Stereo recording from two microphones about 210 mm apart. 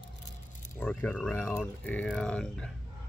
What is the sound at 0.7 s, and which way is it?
Speech, 10° left (ahead or behind).